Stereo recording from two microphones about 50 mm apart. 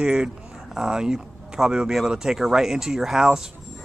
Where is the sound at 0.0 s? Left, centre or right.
Centre.